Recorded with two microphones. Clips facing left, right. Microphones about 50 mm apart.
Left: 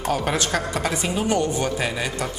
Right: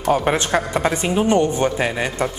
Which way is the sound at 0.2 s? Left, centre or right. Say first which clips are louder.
Right 4 dB; right.